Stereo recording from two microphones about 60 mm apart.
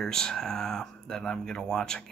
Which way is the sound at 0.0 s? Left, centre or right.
Centre.